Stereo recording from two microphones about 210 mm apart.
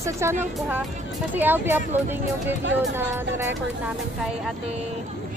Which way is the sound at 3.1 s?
15° right (ahead or behind).